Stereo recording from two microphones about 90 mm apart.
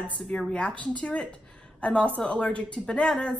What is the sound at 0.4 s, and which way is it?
A woman's voice, 10° left (ahead or behind).